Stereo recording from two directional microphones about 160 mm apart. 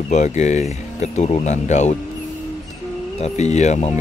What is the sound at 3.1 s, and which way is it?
Speech, 45° left (ahead or behind).